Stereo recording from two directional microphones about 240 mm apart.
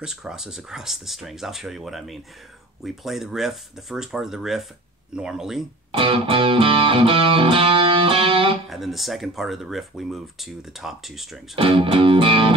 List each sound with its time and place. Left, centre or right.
0.0 s speech: centre
5.9 s music: right
8.6 s speech: centre
11.5 s music: right